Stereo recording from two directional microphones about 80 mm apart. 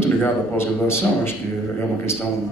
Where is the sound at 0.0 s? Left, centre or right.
Left.